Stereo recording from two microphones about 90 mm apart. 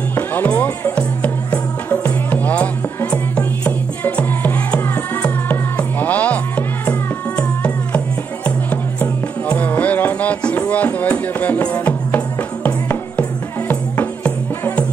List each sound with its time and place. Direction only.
0.1 s music: 20° left (ahead or behind)
9.0 s music: 20° left (ahead or behind)